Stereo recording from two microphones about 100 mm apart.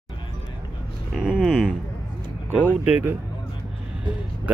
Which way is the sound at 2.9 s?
15° right (ahead or behind).